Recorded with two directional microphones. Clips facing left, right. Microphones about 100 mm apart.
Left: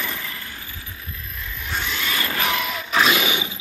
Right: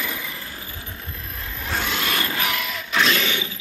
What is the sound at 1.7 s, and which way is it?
Vehicle, 55° right (ahead or behind).